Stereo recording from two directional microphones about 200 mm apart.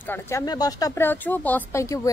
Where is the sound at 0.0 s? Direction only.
10° left (ahead or behind).